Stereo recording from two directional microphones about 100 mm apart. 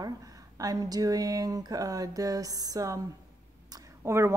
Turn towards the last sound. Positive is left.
turn(degrees=-30)  # may be behind; listen again after turning